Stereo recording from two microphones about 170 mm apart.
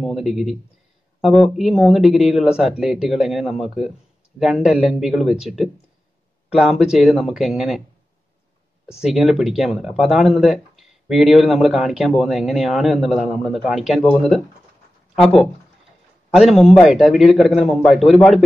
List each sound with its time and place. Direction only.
0.0 s a man's voice: centre (ahead or behind)
8.8 s speech: centre (ahead or behind)